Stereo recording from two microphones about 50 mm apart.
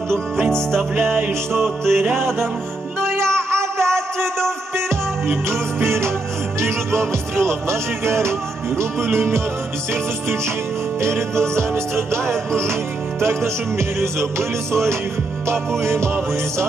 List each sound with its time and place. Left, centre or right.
1.9 s music: right
11.0 s music: right